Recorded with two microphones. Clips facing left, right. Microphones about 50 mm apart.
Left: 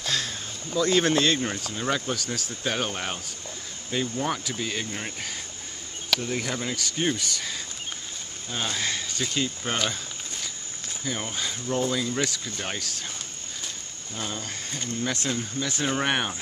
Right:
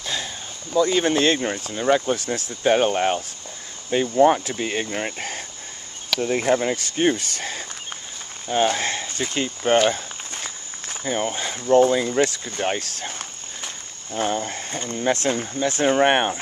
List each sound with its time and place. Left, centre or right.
0.0 s a sound: centre
0.7 s speech: centre
1.1 s speech: right
1.4 s speech: centre
2.1 s speech: right
8.5 s a sound: right
11.1 s speech: right
14.1 s speech: right
15.1 s speech: right